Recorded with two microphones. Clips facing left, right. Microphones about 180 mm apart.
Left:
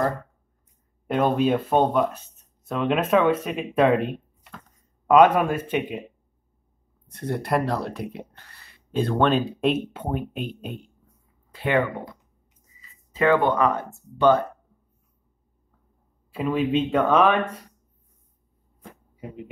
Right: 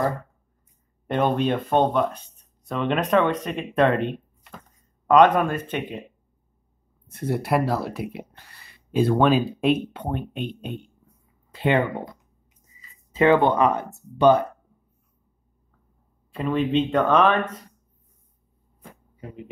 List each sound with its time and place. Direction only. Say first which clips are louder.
1.0 s speech: left 1 dB; 5° left (ahead or behind)
7.1 s speech: right 2 dB; 5° right (ahead or behind)
11.5 s speech: right 1 dB; 20° right (ahead or behind)
13.1 s speech: right 2 dB; 20° right (ahead or behind)
16.3 s speech: even; 5° left (ahead or behind)